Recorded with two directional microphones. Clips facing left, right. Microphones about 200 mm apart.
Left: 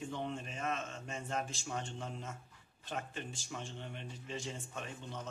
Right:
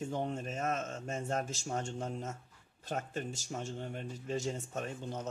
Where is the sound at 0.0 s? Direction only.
45° right (ahead or behind).